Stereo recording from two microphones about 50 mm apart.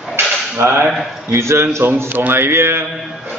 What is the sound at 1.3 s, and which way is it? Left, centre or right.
Speech, right.